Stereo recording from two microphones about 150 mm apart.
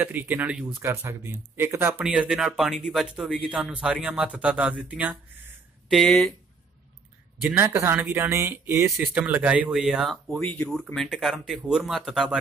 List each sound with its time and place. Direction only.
0.0 s speech: 10° right (ahead or behind)
5.9 s speech: 5° left (ahead or behind)
7.4 s speech: 15° right (ahead or behind)